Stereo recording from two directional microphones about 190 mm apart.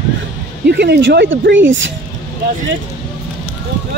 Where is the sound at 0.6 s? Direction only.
60° right (ahead or behind).